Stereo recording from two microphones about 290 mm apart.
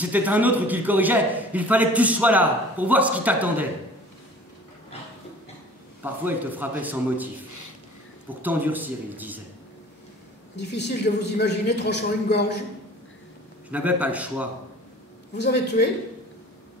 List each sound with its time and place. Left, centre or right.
0.0 s a man's voice: centre
6.0 s a man's voice: centre
8.4 s a man's voice: centre
10.5 s a woman's voice: left
13.7 s a man's voice: centre
15.3 s a woman's voice: left